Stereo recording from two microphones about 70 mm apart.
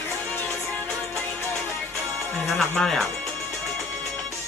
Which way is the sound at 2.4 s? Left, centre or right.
Centre.